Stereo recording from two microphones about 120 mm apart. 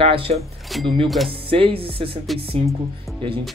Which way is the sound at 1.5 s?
50° right (ahead or behind).